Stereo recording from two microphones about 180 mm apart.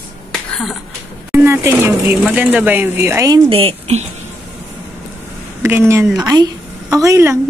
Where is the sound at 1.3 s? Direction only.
15° right (ahead or behind).